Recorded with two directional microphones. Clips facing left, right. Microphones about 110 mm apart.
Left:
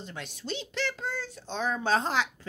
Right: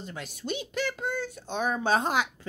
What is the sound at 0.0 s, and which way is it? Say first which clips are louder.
A woman's voice: right 2 dB; 5° right (ahead or behind).